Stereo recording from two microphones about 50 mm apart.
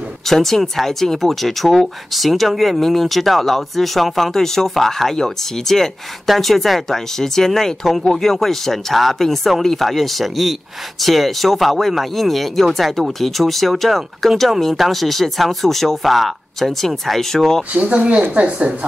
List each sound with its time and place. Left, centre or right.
0.3 s speech: centre
17.7 s a woman's voice: right